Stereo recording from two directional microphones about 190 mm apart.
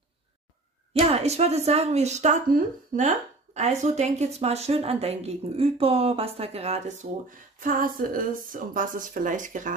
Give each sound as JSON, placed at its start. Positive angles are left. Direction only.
{"t": 0.9, "sound": "speech", "side_deg": -30}